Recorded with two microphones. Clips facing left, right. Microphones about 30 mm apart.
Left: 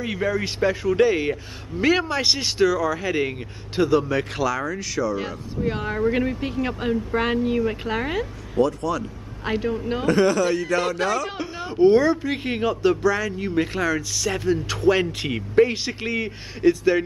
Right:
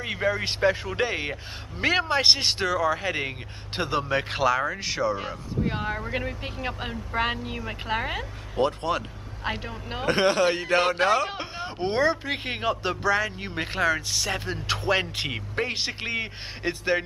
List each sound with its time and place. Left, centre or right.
0.0 s speech: centre
5.2 s speech: centre
8.5 s speech: right
9.4 s speech: centre
10.0 s speech: right